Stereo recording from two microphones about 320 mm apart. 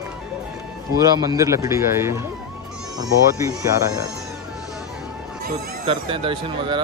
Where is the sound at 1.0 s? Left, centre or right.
Centre.